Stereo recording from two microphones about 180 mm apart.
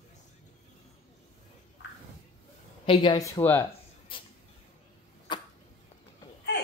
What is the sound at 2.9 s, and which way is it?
Speech, 30° left (ahead or behind).